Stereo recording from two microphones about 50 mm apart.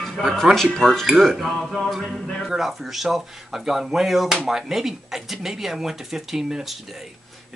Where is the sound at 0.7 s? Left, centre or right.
Centre.